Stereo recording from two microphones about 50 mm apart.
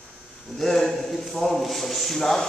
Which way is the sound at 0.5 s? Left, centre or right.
Centre.